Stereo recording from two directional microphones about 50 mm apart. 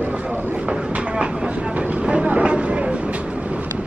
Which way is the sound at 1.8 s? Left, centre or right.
Right.